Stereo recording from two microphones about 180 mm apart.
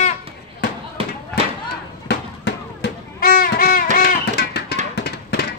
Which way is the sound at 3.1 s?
55° left (ahead or behind).